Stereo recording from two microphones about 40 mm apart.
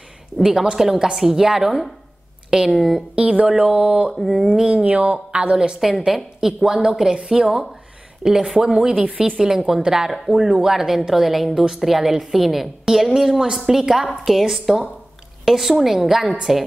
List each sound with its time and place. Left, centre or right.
0.4 s a woman's voice: centre
3.2 s speech: right
3.4 s a woman's voice: centre
4.8 s speech: right
5.3 s speech: right
5.8 s a woman's voice: centre